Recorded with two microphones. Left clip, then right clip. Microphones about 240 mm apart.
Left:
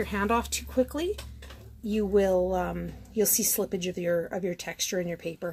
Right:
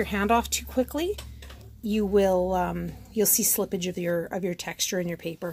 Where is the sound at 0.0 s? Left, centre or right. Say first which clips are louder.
Right 3 dB; right.